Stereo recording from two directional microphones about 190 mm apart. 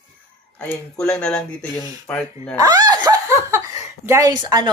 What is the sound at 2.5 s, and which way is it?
Laughter, 20° right (ahead or behind).